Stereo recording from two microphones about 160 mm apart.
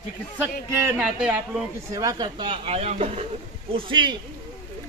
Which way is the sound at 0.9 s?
5° right (ahead or behind).